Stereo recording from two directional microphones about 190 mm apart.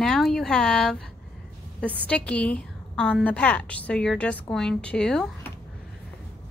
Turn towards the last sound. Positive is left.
turn(degrees=0)  # may be behind; listen again after turning